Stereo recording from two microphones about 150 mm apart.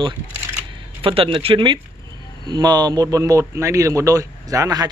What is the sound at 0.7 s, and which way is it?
Speech, 35° right (ahead or behind).